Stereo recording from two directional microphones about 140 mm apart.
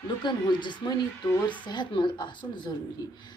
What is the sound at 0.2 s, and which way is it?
A woman's voice, 35° left (ahead or behind).